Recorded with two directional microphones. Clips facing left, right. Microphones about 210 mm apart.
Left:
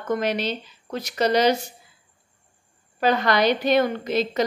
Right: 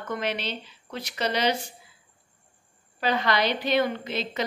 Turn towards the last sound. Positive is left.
turn(degrees=40)  # may be behind; listen again after turning